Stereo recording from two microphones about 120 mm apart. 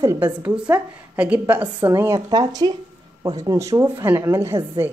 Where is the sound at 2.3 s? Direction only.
35° right (ahead or behind).